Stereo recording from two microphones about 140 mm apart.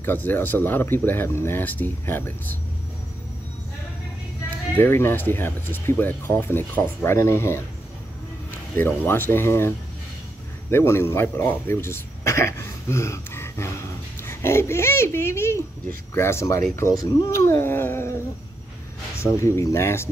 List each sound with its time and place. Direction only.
0.0 s speech: 15° left (ahead or behind)
4.7 s speech: 15° left (ahead or behind)
8.7 s speech: 15° left (ahead or behind)
19.2 s speech: 20° left (ahead or behind)